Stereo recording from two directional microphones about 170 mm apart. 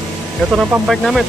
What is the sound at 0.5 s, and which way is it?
Speech, 5° right (ahead or behind).